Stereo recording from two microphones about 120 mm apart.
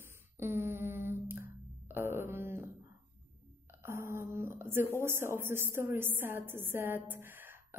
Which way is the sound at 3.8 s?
20° right (ahead or behind).